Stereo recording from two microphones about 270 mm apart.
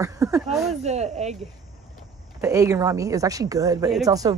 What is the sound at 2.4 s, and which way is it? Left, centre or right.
Speech, centre.